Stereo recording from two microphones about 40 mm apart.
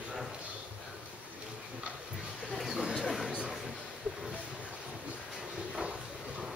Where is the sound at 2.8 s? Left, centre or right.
Centre.